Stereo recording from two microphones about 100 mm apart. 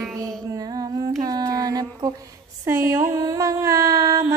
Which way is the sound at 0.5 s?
40° right (ahead or behind).